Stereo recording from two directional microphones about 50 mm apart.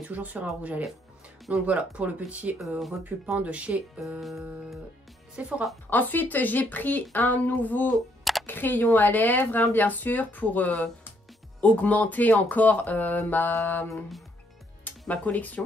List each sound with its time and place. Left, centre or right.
0.1 s speech: right
4.2 s music: centre
5.3 s speech: right
5.9 s speech: left
7.9 s a sound: centre
8.5 s speech: left
14.9 s speech: left